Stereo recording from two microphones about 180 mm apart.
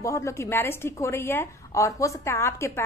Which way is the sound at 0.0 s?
15° left (ahead or behind).